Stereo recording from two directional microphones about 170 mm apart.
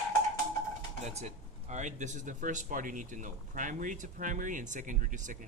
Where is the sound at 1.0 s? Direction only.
40° right (ahead or behind).